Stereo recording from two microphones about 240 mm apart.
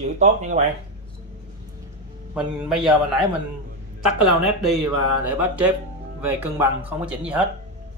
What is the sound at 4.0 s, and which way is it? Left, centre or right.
Speech, centre.